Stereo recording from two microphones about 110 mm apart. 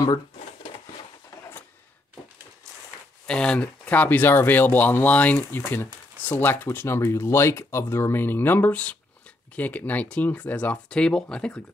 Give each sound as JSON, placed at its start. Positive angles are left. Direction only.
{"t": 3.3, "sound": "speech", "side_deg": 10}